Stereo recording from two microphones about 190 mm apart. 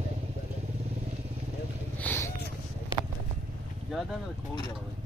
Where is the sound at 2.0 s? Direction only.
10° left (ahead or behind).